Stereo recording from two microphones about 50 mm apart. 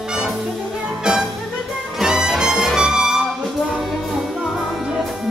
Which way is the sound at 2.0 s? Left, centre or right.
Centre.